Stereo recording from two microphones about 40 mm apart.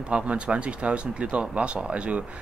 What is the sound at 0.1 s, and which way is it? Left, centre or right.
Speech, right.